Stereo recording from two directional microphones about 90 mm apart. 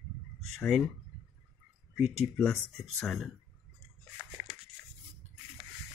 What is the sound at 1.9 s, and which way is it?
Speech, 5° left (ahead or behind).